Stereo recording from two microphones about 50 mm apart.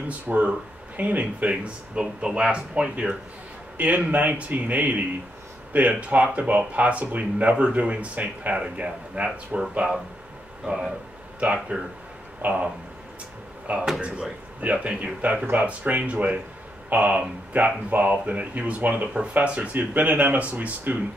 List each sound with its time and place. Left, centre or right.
0.3 s speech: right
1.5 s speech: centre
3.7 s speech: right
12.4 s speech: right
13.7 s speech: right